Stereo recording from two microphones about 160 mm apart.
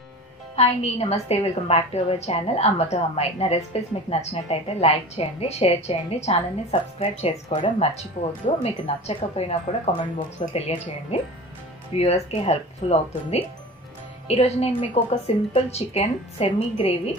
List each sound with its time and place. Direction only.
0.6 s a woman's voice: 40° left (ahead or behind)
7.5 s speech: 30° left (ahead or behind)
7.9 s a woman's voice: 40° left (ahead or behind)